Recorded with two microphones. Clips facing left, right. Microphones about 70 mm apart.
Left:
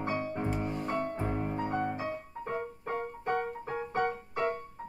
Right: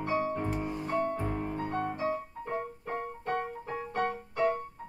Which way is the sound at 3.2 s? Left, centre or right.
Left.